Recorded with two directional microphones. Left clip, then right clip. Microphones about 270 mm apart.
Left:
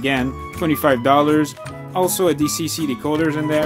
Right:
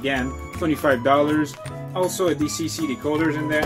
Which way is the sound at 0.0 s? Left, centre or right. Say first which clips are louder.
Left 4 dB; left.